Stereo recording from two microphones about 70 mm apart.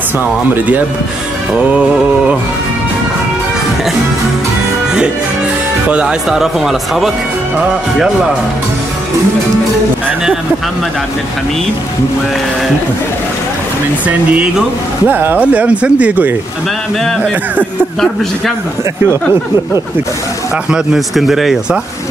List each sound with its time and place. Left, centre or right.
0.6 s speech: right
5.9 s speech: centre
14.0 s speech: right
20.7 s speech: centre